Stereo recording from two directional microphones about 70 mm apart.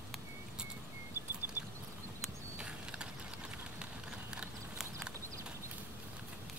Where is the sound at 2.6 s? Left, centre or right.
Centre.